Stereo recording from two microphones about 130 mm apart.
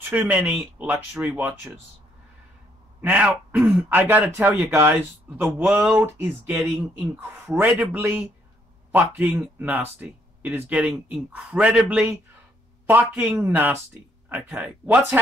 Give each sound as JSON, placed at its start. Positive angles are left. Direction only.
{"t": 0.0, "sound": "speech", "side_deg": -15}
{"t": 3.0, "sound": "speech", "side_deg": -10}